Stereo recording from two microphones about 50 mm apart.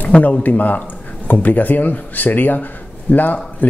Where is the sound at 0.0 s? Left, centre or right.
Left.